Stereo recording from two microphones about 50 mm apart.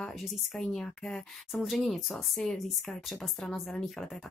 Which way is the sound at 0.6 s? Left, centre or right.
Centre.